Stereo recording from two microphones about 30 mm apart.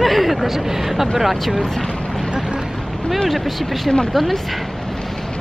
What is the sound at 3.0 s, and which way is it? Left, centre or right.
Speech, centre.